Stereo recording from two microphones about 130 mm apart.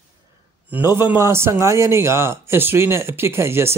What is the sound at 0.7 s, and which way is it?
A man's voice, 15° right (ahead or behind).